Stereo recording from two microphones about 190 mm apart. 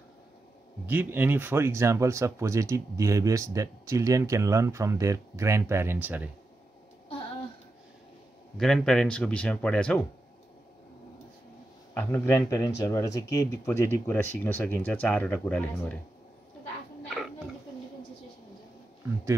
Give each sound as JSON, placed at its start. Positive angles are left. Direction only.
{"t": 0.8, "sound": "speech", "side_deg": -10}
{"t": 8.5, "sound": "speech", "side_deg": 0}
{"t": 11.9, "sound": "speech", "side_deg": 10}